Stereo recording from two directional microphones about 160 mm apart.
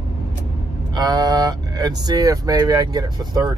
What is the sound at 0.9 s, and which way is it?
Speech, 25° right (ahead or behind).